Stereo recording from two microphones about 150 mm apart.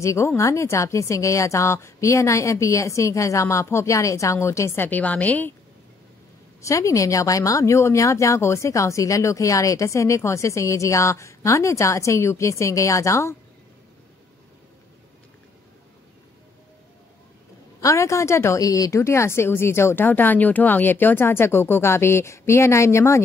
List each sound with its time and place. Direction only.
0.0 s speech: 20° left (ahead or behind)
6.6 s speech: 20° left (ahead or behind)
17.7 s a woman's voice: 20° left (ahead or behind)